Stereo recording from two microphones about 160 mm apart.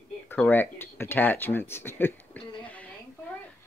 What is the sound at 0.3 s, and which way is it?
Speech, 10° left (ahead or behind).